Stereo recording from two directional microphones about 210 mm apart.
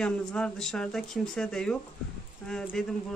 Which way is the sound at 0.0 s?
5° left (ahead or behind).